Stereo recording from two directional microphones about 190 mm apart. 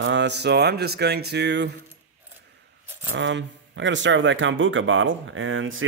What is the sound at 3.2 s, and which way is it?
Speech, 70° right (ahead or behind).